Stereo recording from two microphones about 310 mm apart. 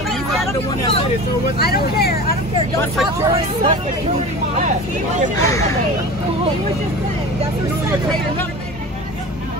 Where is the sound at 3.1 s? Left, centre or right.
Centre.